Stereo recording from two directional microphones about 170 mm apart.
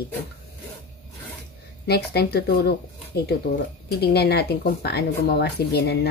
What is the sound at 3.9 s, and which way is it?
Speech, 70° left (ahead or behind).